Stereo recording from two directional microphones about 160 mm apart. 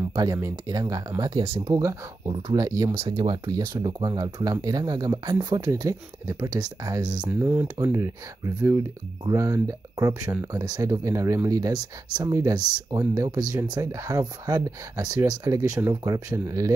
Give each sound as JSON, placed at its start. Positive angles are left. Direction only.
{"t": 0.1, "sound": "speech", "side_deg": -25}
{"t": 1.4, "sound": "speech", "side_deg": -35}
{"t": 1.7, "sound": "speech", "side_deg": -20}
{"t": 7.2, "sound": "speech", "side_deg": -10}
{"t": 7.6, "sound": "speech", "side_deg": -20}